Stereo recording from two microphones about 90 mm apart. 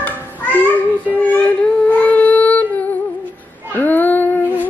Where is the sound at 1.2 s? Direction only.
15° left (ahead or behind).